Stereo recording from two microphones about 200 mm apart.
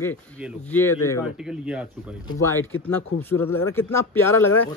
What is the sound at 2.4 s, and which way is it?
Speech, 10° left (ahead or behind).